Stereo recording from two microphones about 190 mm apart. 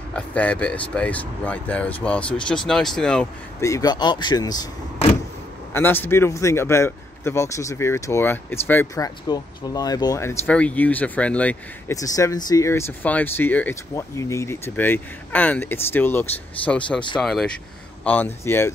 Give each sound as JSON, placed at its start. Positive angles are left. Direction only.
{"t": 0.1, "sound": "a man's voice", "side_deg": 5}
{"t": 3.6, "sound": "speech", "side_deg": 20}
{"t": 5.7, "sound": "a man's voice", "side_deg": 10}
{"t": 11.9, "sound": "a man's voice", "side_deg": 15}